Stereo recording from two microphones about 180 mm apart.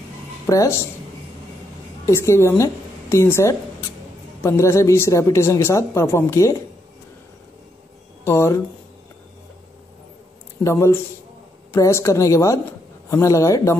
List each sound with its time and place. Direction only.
0.5 s speech: 20° left (ahead or behind)
2.0 s a woman's voice: 15° left (ahead or behind)
8.2 s speech: 15° left (ahead or behind)
10.6 s a woman's voice: 15° left (ahead or behind)